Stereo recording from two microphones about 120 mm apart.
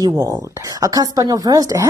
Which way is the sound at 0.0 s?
30° right (ahead or behind).